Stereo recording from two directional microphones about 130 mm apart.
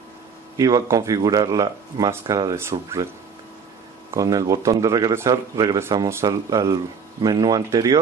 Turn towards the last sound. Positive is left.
turn(degrees=-30)  # may be behind; listen again after turning